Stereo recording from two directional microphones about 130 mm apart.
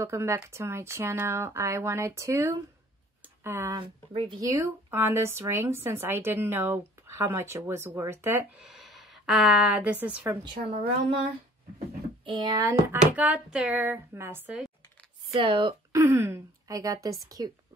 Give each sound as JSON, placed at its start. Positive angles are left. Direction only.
{"t": 0.0, "sound": "a woman's voice", "side_deg": -20}
{"t": 3.8, "sound": "a woman's voice", "side_deg": -40}
{"t": 4.4, "sound": "a woman's voice", "side_deg": -25}
{"t": 8.5, "sound": "a woman's voice", "side_deg": 0}
{"t": 10.4, "sound": "a woman's voice", "side_deg": -40}
{"t": 12.3, "sound": "a woman's voice", "side_deg": -35}
{"t": 13.1, "sound": "speech", "side_deg": -10}
{"t": 15.3, "sound": "a woman's voice", "side_deg": -40}
{"t": 15.9, "sound": "a woman's voice", "side_deg": -20}